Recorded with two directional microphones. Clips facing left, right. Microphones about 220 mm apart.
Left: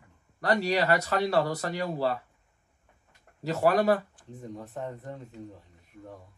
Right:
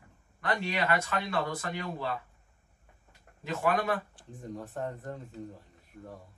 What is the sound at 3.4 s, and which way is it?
Speech, 40° left (ahead or behind).